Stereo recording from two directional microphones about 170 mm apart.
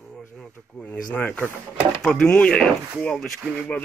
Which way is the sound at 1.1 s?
10° left (ahead or behind).